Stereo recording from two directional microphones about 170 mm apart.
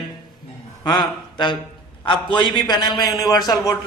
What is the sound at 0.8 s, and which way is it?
A man's voice, 25° left (ahead or behind).